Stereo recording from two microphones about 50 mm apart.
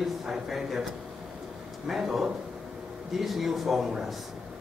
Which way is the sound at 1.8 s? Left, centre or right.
Centre.